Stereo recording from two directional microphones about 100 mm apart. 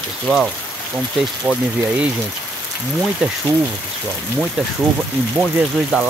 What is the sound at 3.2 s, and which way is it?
Speech, 10° right (ahead or behind).